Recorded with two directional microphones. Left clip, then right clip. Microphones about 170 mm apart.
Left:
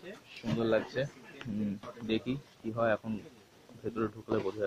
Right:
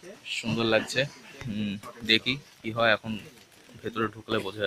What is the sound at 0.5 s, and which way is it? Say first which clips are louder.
Speech: right 5 dB; 35° right (ahead or behind).